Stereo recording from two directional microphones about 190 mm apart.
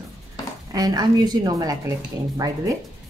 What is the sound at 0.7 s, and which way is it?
A woman's voice, 20° right (ahead or behind).